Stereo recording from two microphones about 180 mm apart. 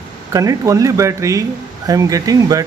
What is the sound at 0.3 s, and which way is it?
A man's voice, 20° right (ahead or behind).